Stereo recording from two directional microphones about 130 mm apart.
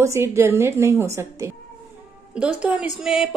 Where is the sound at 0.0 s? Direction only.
20° right (ahead or behind).